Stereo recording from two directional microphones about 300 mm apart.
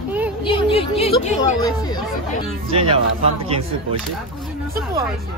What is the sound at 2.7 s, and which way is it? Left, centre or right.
Speech, centre.